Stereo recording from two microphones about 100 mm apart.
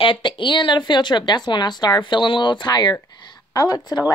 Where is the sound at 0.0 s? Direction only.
55° left (ahead or behind).